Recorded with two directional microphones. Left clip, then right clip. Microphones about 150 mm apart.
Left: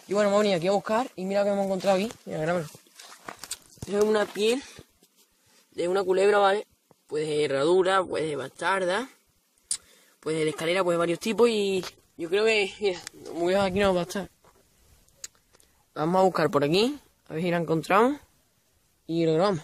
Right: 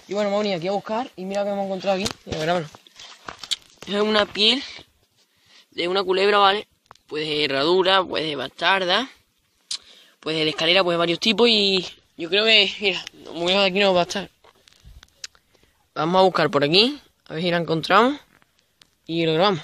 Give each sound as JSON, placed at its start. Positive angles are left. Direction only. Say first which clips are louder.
{"t": 0.1, "sound": "speech", "louder": "even", "side_deg": 10}
{"t": 2.4, "sound": "speech", "louder": "right 5 dB", "side_deg": -40}
{"t": 3.4, "sound": "speech", "louder": "right 13 dB", "side_deg": -15}
{"t": 5.8, "sound": "speech", "louder": "right 3 dB", "side_deg": -20}
{"t": 10.2, "sound": "speech", "louder": "right 6 dB", "side_deg": -25}
{"t": 15.9, "sound": "speech", "louder": "right 5 dB", "side_deg": -25}